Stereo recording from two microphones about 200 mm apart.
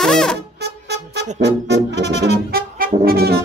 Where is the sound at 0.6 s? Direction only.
55° right (ahead or behind).